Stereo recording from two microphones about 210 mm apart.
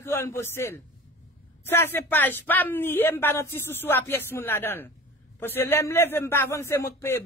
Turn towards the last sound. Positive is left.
turn(degrees=10)  # may be behind; listen again after turning